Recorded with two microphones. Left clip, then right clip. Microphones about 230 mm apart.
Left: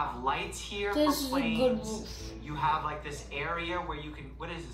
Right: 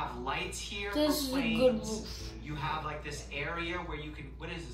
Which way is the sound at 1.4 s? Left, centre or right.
Centre.